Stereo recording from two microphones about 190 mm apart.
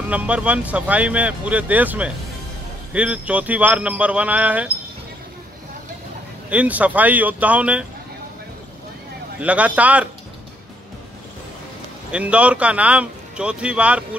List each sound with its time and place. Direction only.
0.1 s speech: 5° right (ahead or behind)
6.5 s speech: 5° right (ahead or behind)
9.4 s speech: 5° right (ahead or behind)
12.1 s speech: 5° right (ahead or behind)